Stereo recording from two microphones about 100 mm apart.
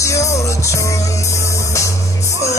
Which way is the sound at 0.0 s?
30° left (ahead or behind).